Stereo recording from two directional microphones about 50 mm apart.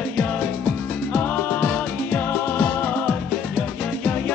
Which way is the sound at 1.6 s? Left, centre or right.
Left.